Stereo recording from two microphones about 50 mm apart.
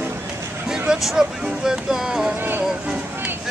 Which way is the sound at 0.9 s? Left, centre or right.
Centre.